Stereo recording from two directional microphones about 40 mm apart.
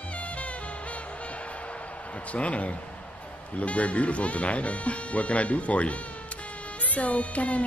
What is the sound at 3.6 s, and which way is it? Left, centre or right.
Speech, left.